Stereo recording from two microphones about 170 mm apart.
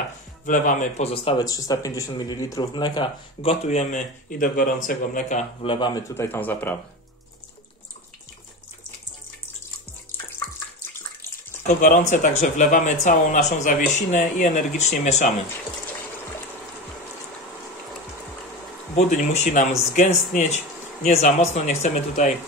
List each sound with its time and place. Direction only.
0.5 s speech: 50° left (ahead or behind)
1.4 s speech: 20° left (ahead or behind)
3.6 s speech: 45° left (ahead or behind)
5.6 s speech: 30° left (ahead or behind); by 6.8 s 10° left (ahead or behind)
11.6 s speech: 45° left (ahead or behind)
18.9 s speech: 45° left (ahead or behind)